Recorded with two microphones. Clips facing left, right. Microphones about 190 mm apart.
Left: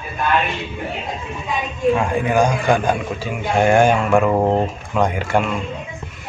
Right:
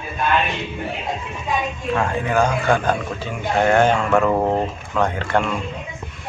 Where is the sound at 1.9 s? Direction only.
15° left (ahead or behind).